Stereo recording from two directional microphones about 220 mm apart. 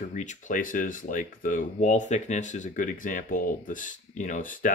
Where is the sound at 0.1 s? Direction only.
35° left (ahead or behind).